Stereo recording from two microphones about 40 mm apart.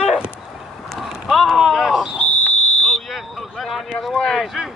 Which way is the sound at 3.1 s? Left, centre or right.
Centre.